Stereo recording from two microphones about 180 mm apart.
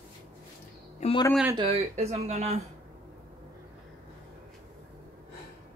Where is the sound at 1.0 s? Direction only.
35° left (ahead or behind).